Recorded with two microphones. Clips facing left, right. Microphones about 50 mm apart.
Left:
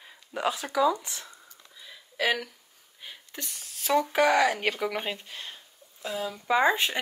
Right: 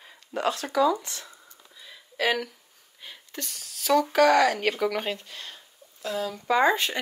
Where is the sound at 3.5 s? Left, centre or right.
Left.